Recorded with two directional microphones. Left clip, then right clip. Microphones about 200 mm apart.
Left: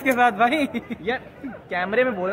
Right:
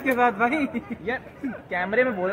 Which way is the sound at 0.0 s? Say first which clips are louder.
Left 3 dB; 45° left (ahead or behind).